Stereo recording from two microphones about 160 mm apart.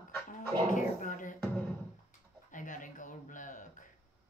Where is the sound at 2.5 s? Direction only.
55° left (ahead or behind).